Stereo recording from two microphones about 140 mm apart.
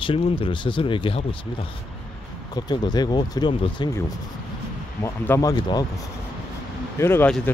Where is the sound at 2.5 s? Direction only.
30° left (ahead or behind).